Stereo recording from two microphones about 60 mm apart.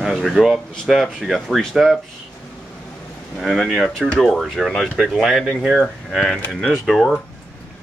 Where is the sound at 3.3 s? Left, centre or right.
Centre.